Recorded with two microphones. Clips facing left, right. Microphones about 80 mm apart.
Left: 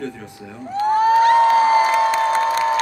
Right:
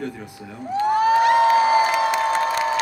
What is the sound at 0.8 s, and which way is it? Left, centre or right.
Cheering, left.